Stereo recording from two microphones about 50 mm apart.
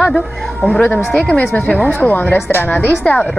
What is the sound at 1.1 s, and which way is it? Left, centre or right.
Speech, centre.